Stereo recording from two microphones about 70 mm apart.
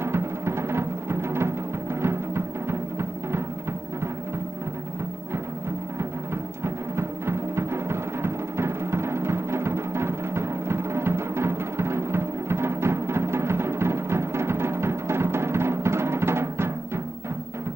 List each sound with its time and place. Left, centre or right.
0.0 s timpani: right
2.0 s music: right
6.6 s music: right